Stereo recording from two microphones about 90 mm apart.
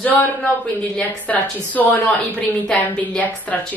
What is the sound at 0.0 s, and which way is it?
A woman's voice, 20° left (ahead or behind).